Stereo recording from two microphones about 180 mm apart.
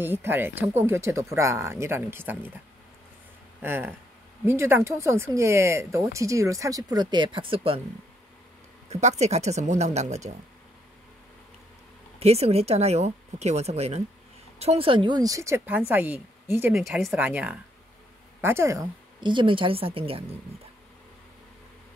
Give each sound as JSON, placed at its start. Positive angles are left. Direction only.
{"t": 0.0, "sound": "speech", "side_deg": -10}
{"t": 3.6, "sound": "speech", "side_deg": -10}
{"t": 8.8, "sound": "speech", "side_deg": -35}
{"t": 12.2, "sound": "a woman's voice", "side_deg": -35}
{"t": 16.7, "sound": "a woman's voice", "side_deg": 0}